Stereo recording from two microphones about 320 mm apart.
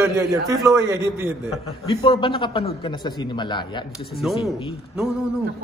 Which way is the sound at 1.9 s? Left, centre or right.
Centre.